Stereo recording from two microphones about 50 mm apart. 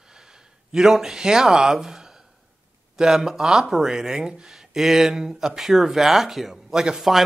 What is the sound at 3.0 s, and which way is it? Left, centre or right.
Speech, centre.